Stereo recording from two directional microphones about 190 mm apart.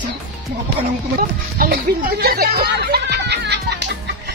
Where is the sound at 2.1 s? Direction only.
55° right (ahead or behind).